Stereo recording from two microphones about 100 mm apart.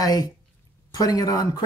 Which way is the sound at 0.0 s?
40° left (ahead or behind).